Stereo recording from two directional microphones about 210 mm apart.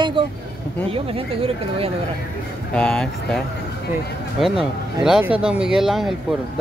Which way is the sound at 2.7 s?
5° left (ahead or behind).